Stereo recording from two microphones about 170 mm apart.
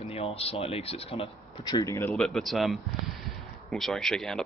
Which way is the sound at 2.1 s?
Centre (ahead or behind).